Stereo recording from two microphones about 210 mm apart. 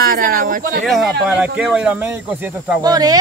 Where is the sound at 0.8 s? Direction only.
Centre (ahead or behind).